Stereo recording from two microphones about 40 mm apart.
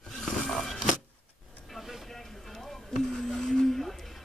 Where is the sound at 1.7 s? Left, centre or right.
Centre.